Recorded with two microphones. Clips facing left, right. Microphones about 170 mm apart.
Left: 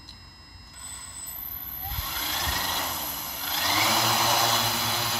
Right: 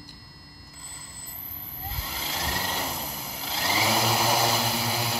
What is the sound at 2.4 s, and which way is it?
Vehicle, 5° right (ahead or behind).